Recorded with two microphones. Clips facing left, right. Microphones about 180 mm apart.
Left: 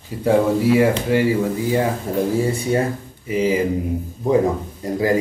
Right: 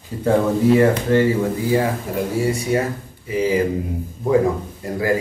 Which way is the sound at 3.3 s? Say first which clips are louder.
Left 1 dB; 20° left (ahead or behind).